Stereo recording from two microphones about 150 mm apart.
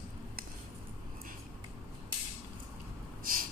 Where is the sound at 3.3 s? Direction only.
70° right (ahead or behind).